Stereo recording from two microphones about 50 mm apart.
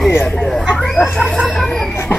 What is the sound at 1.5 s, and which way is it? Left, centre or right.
Chicken, centre.